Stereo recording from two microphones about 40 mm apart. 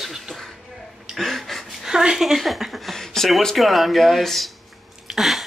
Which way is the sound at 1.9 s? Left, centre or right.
Centre.